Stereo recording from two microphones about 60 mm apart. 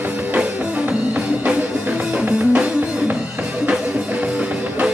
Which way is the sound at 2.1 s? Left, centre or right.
Right.